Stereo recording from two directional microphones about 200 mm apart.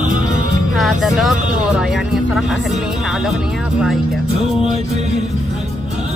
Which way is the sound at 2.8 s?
Centre (ahead or behind).